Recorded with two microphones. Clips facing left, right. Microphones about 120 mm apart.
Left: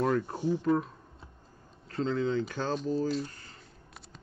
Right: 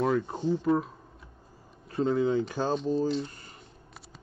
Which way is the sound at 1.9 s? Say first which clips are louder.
Right 4 dB; 15° right (ahead or behind).